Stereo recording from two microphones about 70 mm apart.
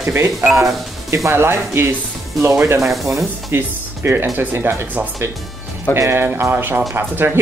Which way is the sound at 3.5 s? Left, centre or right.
Right.